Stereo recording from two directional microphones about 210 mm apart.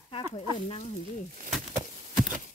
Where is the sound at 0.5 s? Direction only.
25° left (ahead or behind).